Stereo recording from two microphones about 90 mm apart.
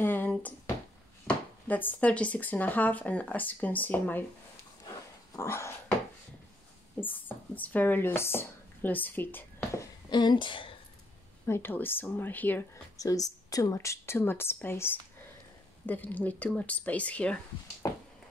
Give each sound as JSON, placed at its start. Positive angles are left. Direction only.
{"t": 0.0, "sound": "a sound", "side_deg": 20}
{"t": 1.2, "sound": "speech", "side_deg": 20}
{"t": 5.3, "sound": "a sound", "side_deg": 30}
{"t": 7.0, "sound": "speech", "side_deg": 20}
{"t": 10.0, "sound": "speech", "side_deg": 55}
{"t": 11.4, "sound": "speech", "side_deg": 25}
{"t": 12.9, "sound": "speech", "side_deg": 40}
{"t": 13.7, "sound": "speech", "side_deg": 30}